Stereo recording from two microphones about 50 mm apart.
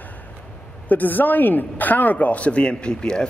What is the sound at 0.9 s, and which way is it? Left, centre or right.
A woman's voice, left.